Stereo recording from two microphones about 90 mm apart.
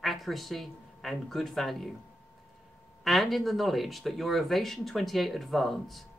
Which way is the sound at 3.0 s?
Centre (ahead or behind).